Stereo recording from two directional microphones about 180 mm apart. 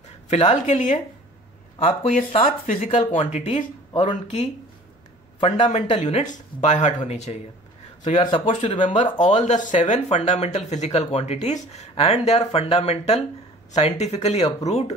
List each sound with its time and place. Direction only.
0.3 s speech: 35° left (ahead or behind)
2.4 s speech: 45° left (ahead or behind)